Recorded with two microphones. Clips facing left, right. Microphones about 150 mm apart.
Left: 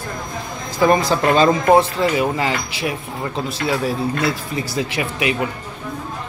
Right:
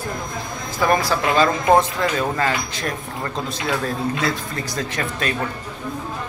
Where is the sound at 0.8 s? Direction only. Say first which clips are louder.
Left 4 dB; 20° left (ahead or behind).